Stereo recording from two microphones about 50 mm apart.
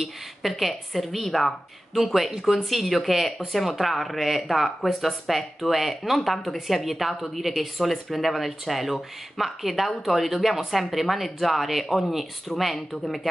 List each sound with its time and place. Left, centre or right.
0.0 s speech: centre